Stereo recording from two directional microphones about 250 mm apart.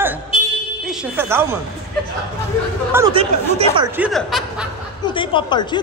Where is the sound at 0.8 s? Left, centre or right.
Centre.